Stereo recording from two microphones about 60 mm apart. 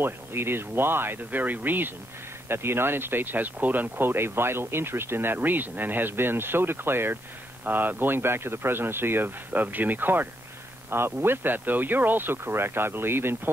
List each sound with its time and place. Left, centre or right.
0.0 s speech: right